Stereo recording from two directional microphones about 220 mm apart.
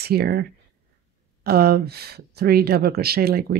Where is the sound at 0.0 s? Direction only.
45° right (ahead or behind).